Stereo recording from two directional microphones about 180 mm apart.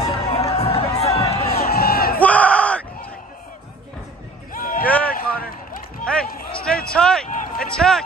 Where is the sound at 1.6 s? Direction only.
60° left (ahead or behind).